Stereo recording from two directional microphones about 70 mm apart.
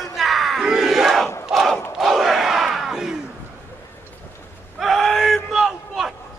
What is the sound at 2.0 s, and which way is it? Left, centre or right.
Crowd, centre.